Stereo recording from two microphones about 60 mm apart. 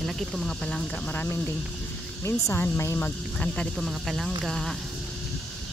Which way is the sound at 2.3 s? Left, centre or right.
Left.